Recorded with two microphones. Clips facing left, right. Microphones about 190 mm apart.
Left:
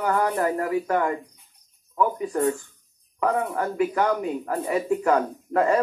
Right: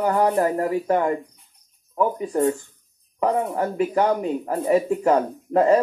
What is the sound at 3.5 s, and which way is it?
Speech, 30° right (ahead or behind).